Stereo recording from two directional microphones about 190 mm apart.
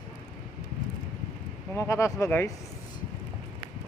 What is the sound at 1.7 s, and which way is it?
Speech, 15° left (ahead or behind).